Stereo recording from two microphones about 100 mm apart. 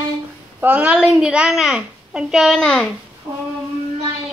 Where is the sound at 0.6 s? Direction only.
15° right (ahead or behind); by 2.8 s 5° left (ahead or behind).